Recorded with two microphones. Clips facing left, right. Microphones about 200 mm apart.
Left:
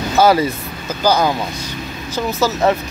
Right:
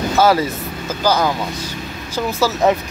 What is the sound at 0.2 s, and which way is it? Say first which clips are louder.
Speech: left 2 dB; centre (ahead or behind).